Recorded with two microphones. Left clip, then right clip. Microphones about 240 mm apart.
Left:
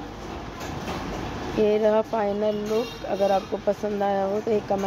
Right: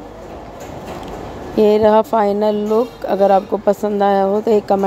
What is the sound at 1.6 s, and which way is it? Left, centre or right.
Speech, right.